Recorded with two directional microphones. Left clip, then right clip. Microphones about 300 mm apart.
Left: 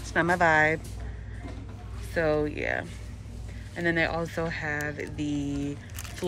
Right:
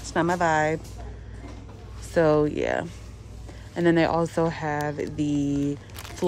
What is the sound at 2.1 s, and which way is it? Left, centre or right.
Speech, right.